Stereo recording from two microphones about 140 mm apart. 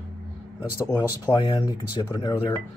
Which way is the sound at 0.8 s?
25° left (ahead or behind).